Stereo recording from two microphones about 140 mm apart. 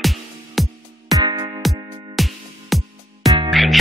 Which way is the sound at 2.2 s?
Centre (ahead or behind).